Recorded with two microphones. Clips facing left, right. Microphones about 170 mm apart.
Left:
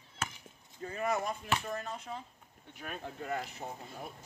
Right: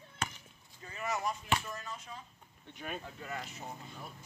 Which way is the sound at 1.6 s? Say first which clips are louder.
Left 5 dB; 55° left (ahead or behind).